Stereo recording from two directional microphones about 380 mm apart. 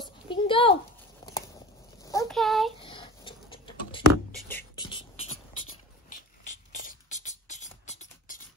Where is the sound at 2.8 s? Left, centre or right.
Centre.